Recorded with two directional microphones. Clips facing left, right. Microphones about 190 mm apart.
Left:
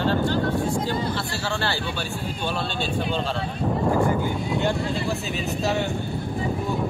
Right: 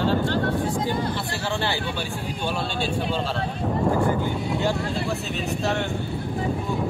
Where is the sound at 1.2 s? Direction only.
15° right (ahead or behind).